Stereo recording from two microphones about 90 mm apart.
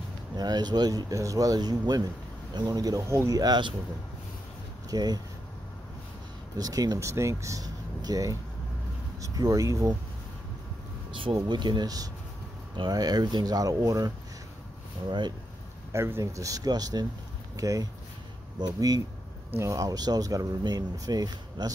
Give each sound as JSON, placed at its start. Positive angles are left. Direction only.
{"t": 0.4, "sound": "speech", "side_deg": -50}
{"t": 3.3, "sound": "speech", "side_deg": -50}
{"t": 4.9, "sound": "speech", "side_deg": -50}
{"t": 6.6, "sound": "speech", "side_deg": -45}
{"t": 11.4, "sound": "speech", "side_deg": -55}
{"t": 15.0, "sound": "speech", "side_deg": -55}
{"t": 15.9, "sound": "speech", "side_deg": -30}